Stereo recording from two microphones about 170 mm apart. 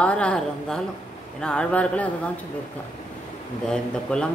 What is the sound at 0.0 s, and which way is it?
A woman's voice, 5° left (ahead or behind).